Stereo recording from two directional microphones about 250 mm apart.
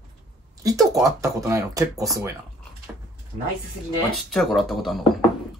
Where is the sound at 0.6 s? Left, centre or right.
Centre.